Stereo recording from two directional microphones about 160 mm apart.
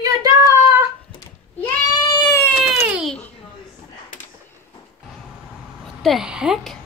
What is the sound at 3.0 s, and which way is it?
Babbling, 5° left (ahead or behind).